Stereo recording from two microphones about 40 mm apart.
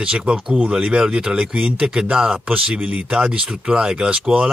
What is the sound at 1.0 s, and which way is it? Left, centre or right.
Speech, centre.